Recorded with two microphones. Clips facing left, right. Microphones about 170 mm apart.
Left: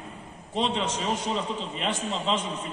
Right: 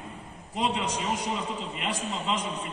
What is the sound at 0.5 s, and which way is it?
A man's voice, 25° left (ahead or behind).